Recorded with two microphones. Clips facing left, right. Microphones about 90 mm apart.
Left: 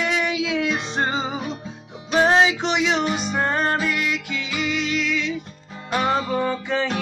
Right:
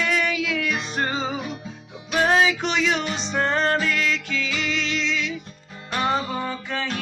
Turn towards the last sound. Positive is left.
turn(degrees=5)  # may be behind; listen again after turning